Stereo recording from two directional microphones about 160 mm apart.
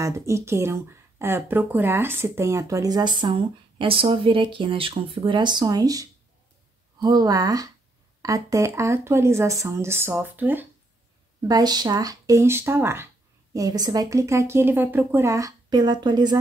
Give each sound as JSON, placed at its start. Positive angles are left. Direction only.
{"t": 0.0, "sound": "speech", "side_deg": -20}
{"t": 11.4, "sound": "speech", "side_deg": -25}